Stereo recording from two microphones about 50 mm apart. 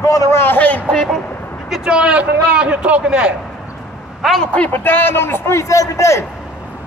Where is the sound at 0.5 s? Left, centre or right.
Left.